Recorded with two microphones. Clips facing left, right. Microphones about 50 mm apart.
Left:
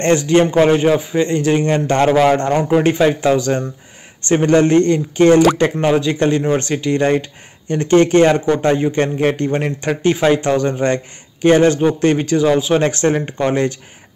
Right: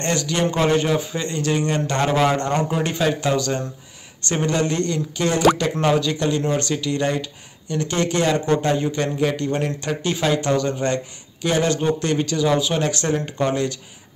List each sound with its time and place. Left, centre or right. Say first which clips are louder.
0.0 s a man's voice: left 9 dB; left
5.8 s a man's voice: left 4 dB; left